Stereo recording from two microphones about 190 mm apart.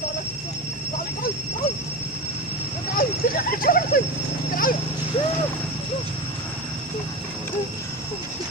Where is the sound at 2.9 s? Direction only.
50° left (ahead or behind).